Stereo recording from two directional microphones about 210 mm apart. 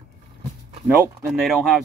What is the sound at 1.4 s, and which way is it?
Speech, centre (ahead or behind).